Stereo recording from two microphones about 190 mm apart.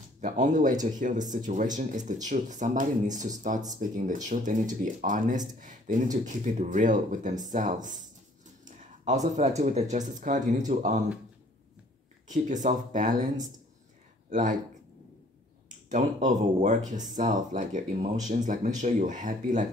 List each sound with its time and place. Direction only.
0.2 s speech: 40° right (ahead or behind)
8.6 s a sound: 40° right (ahead or behind)
9.6 s speech: 35° right (ahead or behind)
12.6 s speech: 40° right (ahead or behind)
15.9 s speech: 40° right (ahead or behind)